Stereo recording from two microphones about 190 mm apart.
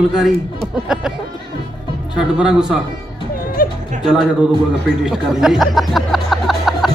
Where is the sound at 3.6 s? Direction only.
50° left (ahead or behind).